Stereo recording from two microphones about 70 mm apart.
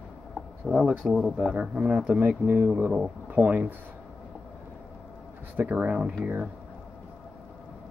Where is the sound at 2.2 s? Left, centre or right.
Right.